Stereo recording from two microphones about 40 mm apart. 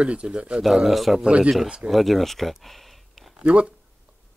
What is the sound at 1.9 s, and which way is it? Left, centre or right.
Speech, centre.